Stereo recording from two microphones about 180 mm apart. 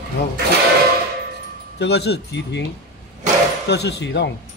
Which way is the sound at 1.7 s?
65° left (ahead or behind).